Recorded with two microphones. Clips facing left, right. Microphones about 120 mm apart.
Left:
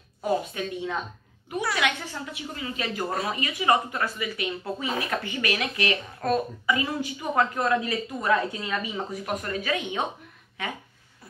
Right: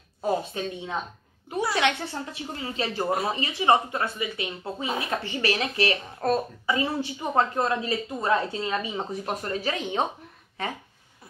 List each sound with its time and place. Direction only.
0.2 s a woman's voice: 30° right (ahead or behind)